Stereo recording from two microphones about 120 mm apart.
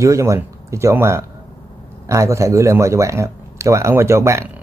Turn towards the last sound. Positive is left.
turn(degrees=-25)  # may be behind; listen again after turning